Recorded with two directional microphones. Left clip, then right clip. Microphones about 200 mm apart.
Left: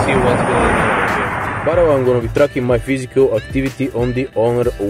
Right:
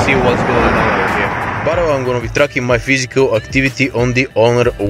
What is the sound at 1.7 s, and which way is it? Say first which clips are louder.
Speech: left 2 dB; 15° right (ahead or behind).